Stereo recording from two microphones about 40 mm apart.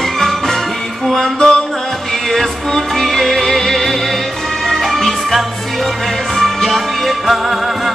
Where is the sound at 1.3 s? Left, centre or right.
Centre.